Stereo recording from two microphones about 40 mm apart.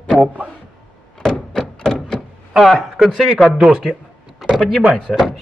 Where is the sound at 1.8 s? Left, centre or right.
Centre.